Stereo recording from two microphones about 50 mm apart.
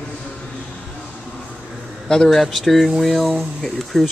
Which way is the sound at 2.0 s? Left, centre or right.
Centre.